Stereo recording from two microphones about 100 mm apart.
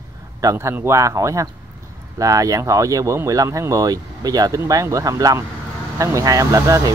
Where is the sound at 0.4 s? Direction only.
30° right (ahead or behind).